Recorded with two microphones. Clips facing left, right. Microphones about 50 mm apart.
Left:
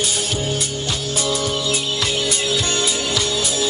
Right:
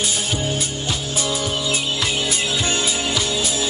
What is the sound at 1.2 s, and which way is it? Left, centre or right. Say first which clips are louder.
Music: left 2 dB; centre.